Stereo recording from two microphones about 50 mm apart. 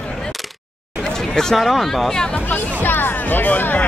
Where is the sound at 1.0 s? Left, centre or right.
Centre.